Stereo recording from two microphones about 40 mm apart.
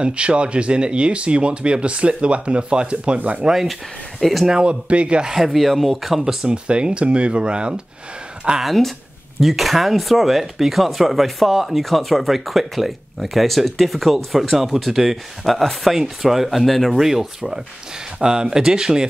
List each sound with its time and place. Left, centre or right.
0.0 s speech: right
4.2 s speech: centre
4.5 s speech: right
5.3 s speech: centre
6.4 s speech: right
8.6 s speech: centre
16.9 s speech: centre